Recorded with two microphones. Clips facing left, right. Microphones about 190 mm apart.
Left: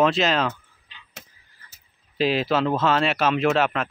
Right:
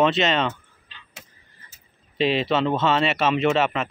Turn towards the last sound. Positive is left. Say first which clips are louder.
# even
turn(degrees=0)  # may be behind; listen again after turning